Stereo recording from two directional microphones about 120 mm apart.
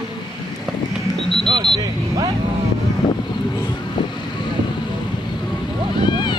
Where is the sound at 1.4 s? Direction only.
40° right (ahead or behind).